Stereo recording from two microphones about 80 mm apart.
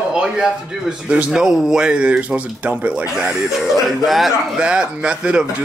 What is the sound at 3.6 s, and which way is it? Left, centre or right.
Speech, centre.